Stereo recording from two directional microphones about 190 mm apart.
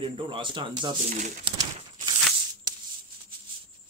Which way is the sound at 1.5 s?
30° right (ahead or behind).